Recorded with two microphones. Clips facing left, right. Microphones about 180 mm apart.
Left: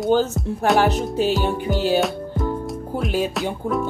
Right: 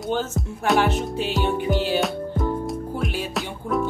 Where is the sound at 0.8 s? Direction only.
40° left (ahead or behind).